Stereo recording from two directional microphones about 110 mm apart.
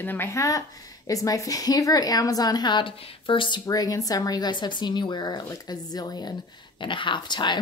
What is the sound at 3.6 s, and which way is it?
A woman's voice, 35° left (ahead or behind).